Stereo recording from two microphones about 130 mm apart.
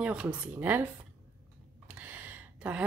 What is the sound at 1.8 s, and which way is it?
Gasp, 15° right (ahead or behind).